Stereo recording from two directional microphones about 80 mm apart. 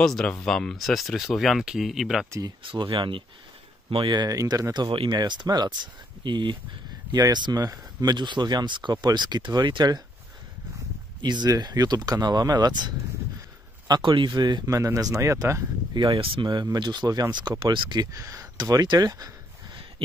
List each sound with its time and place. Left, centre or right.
0.0 s speech: centre
2.6 s speech: right
3.9 s speech: right
4.3 s speech: right
4.7 s speech: right
11.1 s speech: right
13.8 s speech: right
14.7 s speech: right
15.9 s speech: right
18.1 s speech: right
18.6 s speech: right